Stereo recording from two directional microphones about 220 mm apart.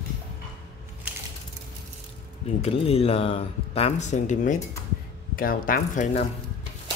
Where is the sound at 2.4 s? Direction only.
25° left (ahead or behind).